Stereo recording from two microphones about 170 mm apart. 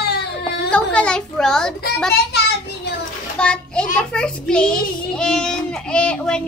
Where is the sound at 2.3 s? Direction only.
80° left.